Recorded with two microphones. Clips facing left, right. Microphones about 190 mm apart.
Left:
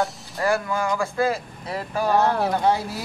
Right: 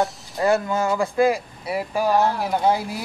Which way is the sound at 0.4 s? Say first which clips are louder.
Right 3 dB; 25° right (ahead or behind).